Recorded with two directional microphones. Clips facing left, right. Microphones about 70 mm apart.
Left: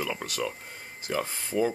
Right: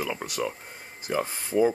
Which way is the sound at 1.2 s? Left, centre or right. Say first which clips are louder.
Right 4 dB; right.